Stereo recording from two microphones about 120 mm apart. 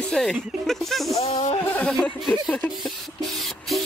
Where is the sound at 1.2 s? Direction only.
65° left (ahead or behind).